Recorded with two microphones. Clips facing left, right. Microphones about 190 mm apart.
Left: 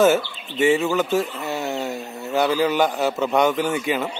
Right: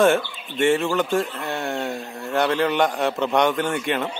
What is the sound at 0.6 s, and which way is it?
Speech, centre (ahead or behind).